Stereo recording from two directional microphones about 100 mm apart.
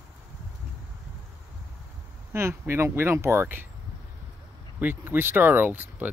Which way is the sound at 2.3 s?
25° right (ahead or behind).